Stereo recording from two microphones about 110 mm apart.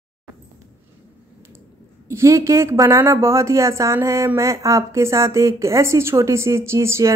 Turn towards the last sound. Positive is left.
turn(degrees=-25)  # may be behind; listen again after turning